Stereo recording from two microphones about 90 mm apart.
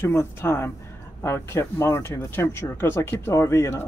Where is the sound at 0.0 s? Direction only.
30° left (ahead or behind).